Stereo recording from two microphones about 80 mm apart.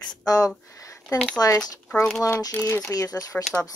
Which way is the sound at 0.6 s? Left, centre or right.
Left.